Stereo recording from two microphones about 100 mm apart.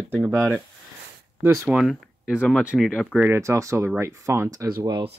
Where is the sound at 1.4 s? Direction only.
30° right (ahead or behind).